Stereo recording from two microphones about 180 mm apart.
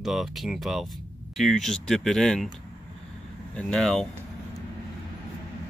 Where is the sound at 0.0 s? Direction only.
Centre (ahead or behind).